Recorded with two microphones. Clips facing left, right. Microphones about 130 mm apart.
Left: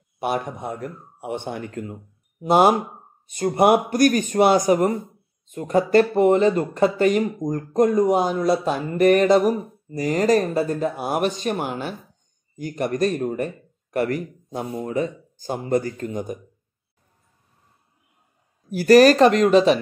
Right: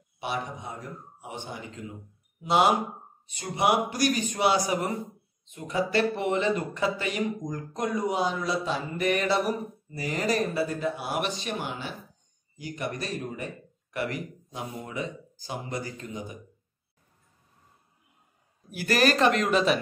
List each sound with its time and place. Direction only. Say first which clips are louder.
0.2 s speech: left 8 dB; 55° left (ahead or behind)
18.7 s speech: left 12 dB; 40° left (ahead or behind)